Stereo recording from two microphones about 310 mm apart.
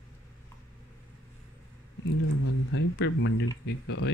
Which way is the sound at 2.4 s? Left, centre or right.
Left.